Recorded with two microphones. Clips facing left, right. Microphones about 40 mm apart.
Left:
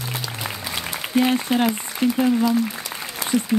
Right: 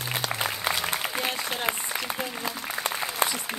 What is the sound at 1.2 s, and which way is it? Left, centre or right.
Applause, left.